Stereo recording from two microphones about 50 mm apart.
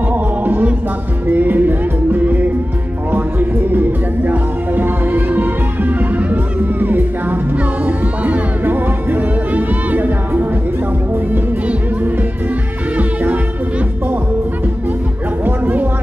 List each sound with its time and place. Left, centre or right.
0.1 s music: right
11.6 s music: right
15.4 s a sound: right